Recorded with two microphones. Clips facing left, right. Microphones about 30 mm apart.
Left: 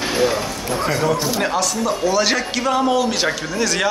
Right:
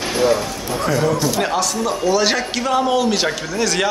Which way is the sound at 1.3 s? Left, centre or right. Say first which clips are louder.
Right 1 dB; centre.